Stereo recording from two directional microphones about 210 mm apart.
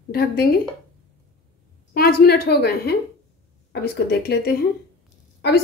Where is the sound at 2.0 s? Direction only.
45° left (ahead or behind).